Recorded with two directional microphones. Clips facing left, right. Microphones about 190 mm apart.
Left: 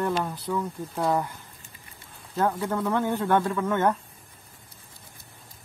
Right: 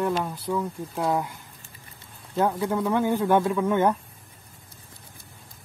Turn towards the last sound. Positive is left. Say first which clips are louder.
# right 2 dB
turn(degrees=-10)  # may be behind; listen again after turning